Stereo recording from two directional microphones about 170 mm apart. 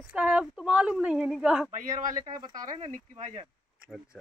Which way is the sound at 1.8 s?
50° right (ahead or behind).